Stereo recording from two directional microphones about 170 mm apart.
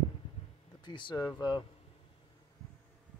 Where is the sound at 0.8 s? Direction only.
25° left (ahead or behind).